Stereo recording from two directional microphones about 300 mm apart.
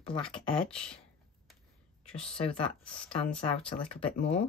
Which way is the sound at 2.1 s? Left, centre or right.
Centre.